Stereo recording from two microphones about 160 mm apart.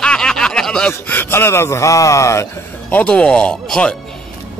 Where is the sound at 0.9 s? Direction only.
15° left (ahead or behind).